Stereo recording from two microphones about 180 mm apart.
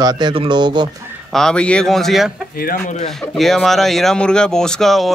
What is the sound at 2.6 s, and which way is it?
Speech, 55° left (ahead or behind).